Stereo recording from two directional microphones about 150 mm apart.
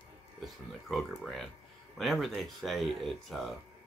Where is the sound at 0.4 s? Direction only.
Centre (ahead or behind).